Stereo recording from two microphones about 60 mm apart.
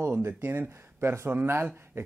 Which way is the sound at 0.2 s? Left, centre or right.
Right.